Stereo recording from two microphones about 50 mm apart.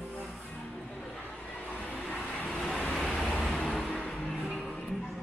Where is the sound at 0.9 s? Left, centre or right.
Centre.